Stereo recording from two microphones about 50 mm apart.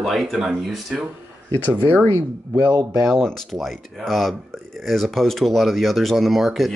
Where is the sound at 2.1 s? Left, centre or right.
Right.